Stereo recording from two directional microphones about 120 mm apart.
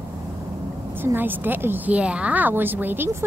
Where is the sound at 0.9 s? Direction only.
15° right (ahead or behind).